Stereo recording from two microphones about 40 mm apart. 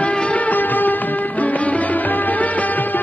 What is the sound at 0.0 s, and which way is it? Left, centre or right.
Music, left.